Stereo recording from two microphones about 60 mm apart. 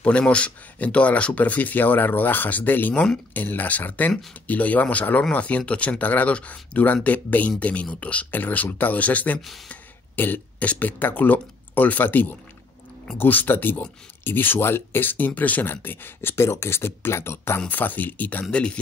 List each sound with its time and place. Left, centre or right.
0.0 s speech: centre; by 17.6 s left
17.6 s speech: left
18.5 s speech: centre